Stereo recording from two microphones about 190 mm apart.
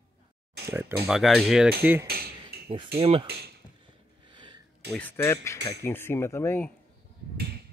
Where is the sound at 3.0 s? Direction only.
30° right (ahead or behind).